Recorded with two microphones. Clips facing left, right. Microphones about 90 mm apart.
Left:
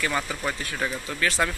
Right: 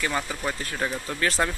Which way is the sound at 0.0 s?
15° right (ahead or behind).